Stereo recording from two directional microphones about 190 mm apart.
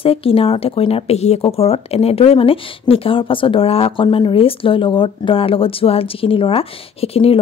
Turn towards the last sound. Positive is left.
turn(degrees=30)  # may be behind; listen again after turning